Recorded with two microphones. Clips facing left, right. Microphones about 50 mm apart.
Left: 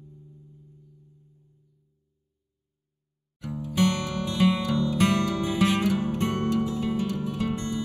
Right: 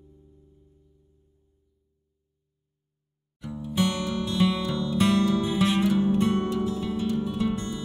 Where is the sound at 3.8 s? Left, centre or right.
Left.